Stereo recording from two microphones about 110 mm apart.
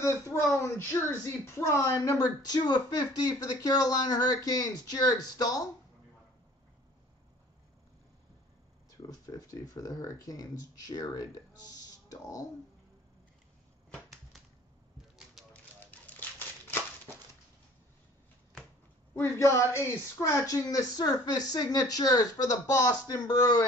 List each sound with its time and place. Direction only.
0.0 s speech: 25° left (ahead or behind)
8.9 s speech: 30° left (ahead or behind)
11.7 s music: 30° left (ahead or behind)
15.5 s typewriter: 15° left (ahead or behind)
19.1 s speech: 25° left (ahead or behind)